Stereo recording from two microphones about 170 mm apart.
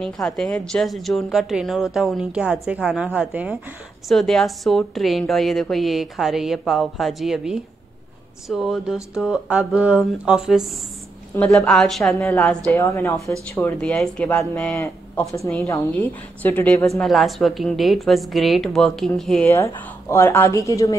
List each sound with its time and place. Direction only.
0.0 s a woman's voice: 5° left (ahead or behind)
12.7 s a woman's voice: 15° left (ahead or behind)
19.8 s speech: 15° left (ahead or behind)